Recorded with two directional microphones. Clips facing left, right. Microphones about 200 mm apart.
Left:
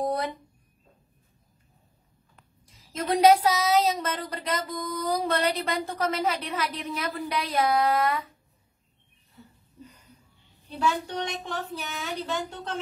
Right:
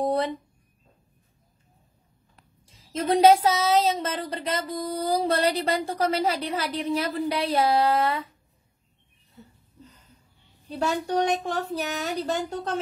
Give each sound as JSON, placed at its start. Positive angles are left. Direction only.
{"t": 0.0, "sound": "speech", "side_deg": -30}
{"t": 2.3, "sound": "speech", "side_deg": -30}
{"t": 10.7, "sound": "speech", "side_deg": -40}